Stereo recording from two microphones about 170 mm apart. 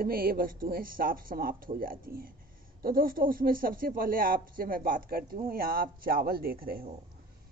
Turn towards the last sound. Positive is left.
turn(degrees=-60)  # may be behind; listen again after turning